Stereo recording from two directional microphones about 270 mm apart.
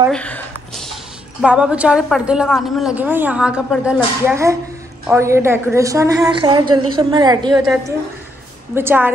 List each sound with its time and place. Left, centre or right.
0.1 s a sound: centre
1.4 s a woman's voice: centre
7.6 s a woman's voice: centre